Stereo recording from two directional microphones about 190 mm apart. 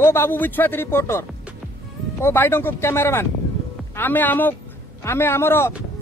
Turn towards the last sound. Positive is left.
turn(degrees=15)  # may be behind; listen again after turning